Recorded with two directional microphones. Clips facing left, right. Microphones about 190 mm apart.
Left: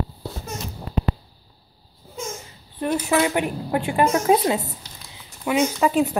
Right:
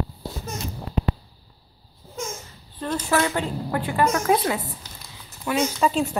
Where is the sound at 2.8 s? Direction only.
15° left (ahead or behind).